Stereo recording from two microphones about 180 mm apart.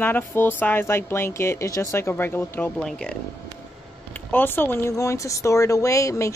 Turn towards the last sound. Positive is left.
turn(degrees=15)  # may be behind; listen again after turning